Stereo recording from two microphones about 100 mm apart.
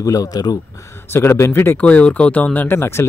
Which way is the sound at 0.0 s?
35° left (ahead or behind).